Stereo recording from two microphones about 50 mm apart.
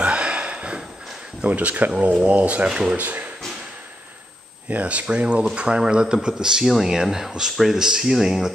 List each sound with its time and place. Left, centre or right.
0.0 s a sound: right
1.4 s speech: right
2.7 s speech: centre
3.0 s speech: right
4.6 s speech: right; by 8.5 s centre